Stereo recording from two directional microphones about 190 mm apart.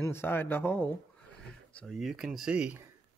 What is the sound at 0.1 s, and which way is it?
Speech, 10° left (ahead or behind).